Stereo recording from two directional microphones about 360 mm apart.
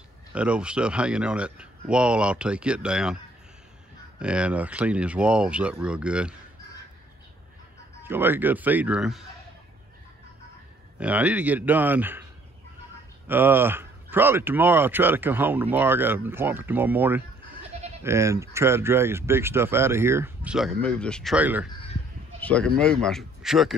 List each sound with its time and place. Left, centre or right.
0.3 s speech: centre
4.2 s speech: centre
8.0 s speech: centre
11.0 s speech: centre
13.3 s speech: centre